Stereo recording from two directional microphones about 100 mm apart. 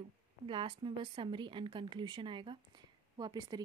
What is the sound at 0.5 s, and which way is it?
A woman's voice, 55° right (ahead or behind).